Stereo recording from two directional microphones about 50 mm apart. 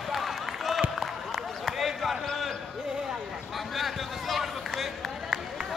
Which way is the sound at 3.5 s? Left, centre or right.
Centre.